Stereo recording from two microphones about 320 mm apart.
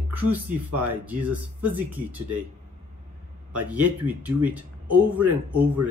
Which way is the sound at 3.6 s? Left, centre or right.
Centre.